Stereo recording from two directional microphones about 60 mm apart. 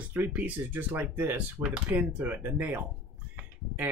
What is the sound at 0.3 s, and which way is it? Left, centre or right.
Speech, right.